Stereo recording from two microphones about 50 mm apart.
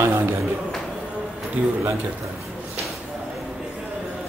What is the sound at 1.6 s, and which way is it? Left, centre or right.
Speech, right.